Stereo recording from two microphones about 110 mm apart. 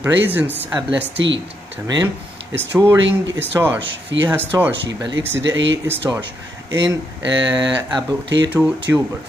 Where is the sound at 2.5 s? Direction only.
20° right (ahead or behind).